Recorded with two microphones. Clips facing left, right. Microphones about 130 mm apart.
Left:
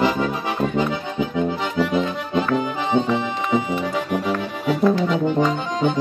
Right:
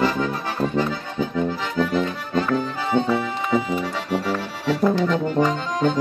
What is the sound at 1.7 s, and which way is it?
Accordion, 15° left (ahead or behind).